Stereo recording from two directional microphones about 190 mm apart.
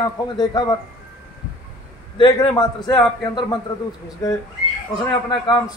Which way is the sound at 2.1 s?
25° left (ahead or behind).